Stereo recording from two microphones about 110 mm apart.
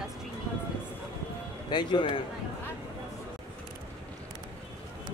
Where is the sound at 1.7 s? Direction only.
45° left (ahead or behind).